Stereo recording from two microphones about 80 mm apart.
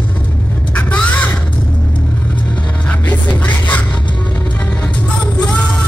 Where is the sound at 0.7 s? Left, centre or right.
Centre.